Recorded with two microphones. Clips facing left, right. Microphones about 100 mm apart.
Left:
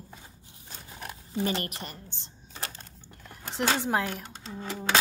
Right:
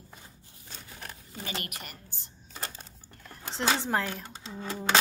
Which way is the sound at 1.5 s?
30° left (ahead or behind).